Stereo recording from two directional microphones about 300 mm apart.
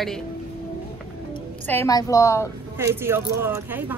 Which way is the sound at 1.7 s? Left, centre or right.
Centre.